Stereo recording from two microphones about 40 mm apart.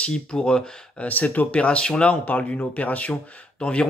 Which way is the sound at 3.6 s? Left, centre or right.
Left.